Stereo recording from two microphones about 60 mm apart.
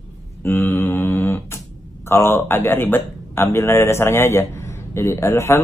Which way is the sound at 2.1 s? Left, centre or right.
Left.